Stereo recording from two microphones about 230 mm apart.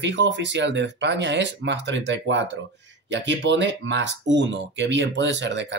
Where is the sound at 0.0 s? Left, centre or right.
Right.